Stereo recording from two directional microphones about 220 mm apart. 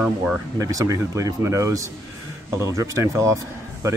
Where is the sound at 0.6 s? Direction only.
15° right (ahead or behind).